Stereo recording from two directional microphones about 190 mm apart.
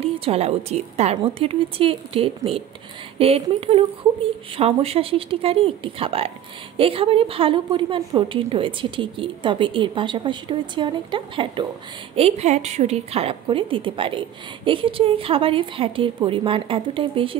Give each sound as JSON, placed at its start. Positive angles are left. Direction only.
{"t": 0.0, "sound": "a woman's voice", "side_deg": -30}